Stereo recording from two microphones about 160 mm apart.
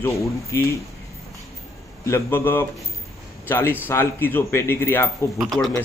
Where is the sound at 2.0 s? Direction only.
15° left (ahead or behind).